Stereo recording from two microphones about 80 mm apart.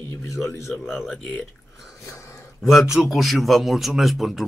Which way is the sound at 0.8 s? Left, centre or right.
Centre.